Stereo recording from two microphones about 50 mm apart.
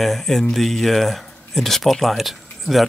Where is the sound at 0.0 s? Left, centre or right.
Centre.